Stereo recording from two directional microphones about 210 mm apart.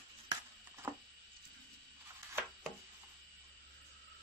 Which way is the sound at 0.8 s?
10° right (ahead or behind).